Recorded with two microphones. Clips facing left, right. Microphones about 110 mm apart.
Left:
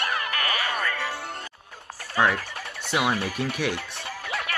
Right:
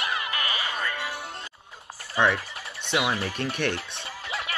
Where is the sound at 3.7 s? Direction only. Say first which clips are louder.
Left 2 dB; 25° right (ahead or behind).